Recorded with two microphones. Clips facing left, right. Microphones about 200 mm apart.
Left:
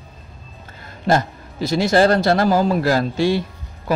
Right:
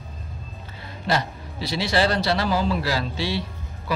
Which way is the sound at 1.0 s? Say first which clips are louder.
Left 6 dB; 45° left (ahead or behind).